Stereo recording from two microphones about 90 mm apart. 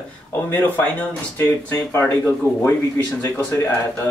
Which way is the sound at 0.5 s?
20° left (ahead or behind).